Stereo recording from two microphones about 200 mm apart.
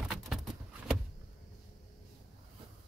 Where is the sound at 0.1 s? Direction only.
Centre (ahead or behind).